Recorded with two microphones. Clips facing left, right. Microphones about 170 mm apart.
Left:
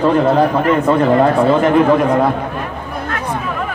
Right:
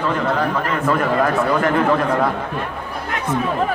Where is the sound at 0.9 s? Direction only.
25° left (ahead or behind).